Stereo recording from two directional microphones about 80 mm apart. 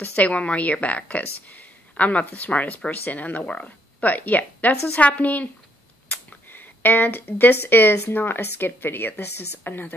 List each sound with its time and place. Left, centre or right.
0.0 s a woman's voice: centre
6.5 s a woman's voice: left